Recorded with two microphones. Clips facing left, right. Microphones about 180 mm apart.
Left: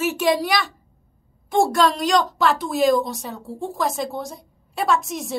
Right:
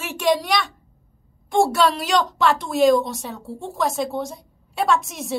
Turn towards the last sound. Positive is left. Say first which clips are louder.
# right 1 dB
turn(degrees=0)  # may be behind; listen again after turning